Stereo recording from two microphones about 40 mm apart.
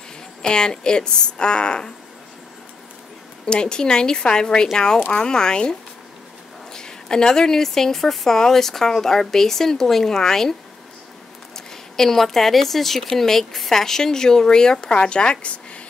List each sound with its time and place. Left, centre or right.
0.4 s a woman's voice: centre
3.4 s a woman's voice: left
11.5 s speech: centre; by 15.8 s left